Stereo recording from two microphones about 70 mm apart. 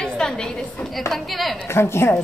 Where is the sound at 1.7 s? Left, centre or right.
Left.